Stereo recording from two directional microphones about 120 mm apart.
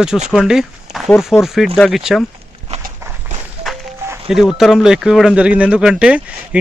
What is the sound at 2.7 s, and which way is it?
Walk, 65° right (ahead or behind).